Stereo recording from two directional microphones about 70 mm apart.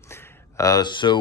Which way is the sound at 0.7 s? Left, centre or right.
Left.